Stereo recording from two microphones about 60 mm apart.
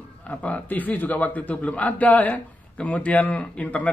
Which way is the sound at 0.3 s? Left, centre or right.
Left.